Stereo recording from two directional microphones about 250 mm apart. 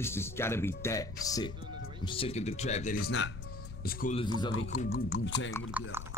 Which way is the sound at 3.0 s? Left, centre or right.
Left.